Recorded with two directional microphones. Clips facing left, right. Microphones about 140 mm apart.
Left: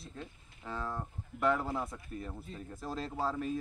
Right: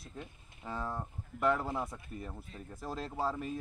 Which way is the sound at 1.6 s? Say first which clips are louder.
Even; 15° right (ahead or behind).